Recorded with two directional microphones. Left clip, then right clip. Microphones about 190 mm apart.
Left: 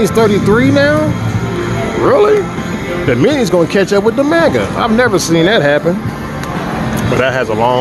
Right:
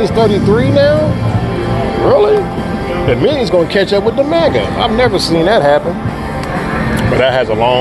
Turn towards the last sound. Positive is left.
turn(degrees=30)  # may be behind; listen again after turning